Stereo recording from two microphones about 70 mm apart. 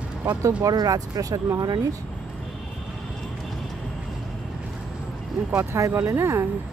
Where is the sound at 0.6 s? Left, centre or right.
Right.